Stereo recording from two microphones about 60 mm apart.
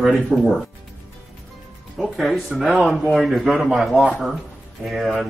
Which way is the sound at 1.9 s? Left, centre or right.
Centre.